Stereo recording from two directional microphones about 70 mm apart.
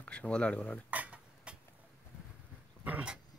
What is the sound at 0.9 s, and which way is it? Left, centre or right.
Dishes, centre.